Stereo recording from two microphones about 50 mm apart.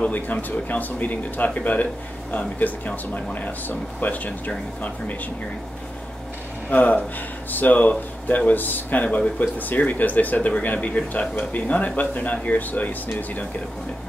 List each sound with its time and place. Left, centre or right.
0.1 s speech: left
6.7 s speech: left